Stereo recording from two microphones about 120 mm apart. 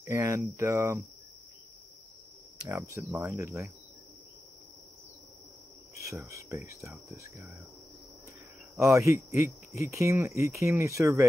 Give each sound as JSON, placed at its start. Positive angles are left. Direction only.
{"t": 0.0, "sound": "cricket", "side_deg": -25}
{"t": 0.6, "sound": "speech", "side_deg": -20}
{"t": 2.7, "sound": "speech", "side_deg": -25}
{"t": 6.2, "sound": "speech", "side_deg": -25}
{"t": 8.7, "sound": "speech", "side_deg": -25}